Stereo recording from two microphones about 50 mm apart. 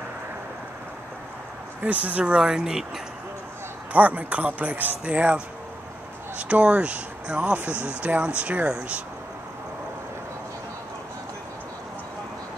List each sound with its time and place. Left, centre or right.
1.9 s speech: right; by 2.8 s centre
3.9 s a man's voice: right